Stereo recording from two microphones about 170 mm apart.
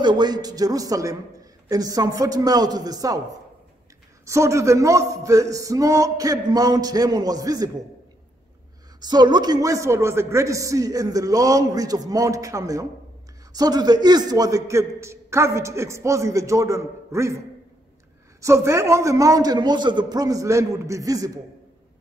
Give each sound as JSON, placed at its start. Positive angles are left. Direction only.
{"t": 0.0, "sound": "a man's voice", "side_deg": -25}
{"t": 4.3, "sound": "a man's voice", "side_deg": -15}
{"t": 9.0, "sound": "a man's voice", "side_deg": -25}
{"t": 18.4, "sound": "a man's voice", "side_deg": -15}